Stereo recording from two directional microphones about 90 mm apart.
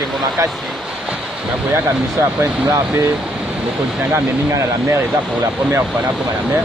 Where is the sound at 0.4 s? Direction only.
35° right (ahead or behind).